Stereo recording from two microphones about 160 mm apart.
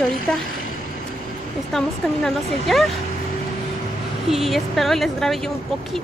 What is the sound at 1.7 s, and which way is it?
Speech, centre (ahead or behind).